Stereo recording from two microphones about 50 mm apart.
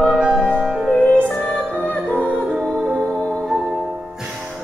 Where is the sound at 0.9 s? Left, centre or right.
Left.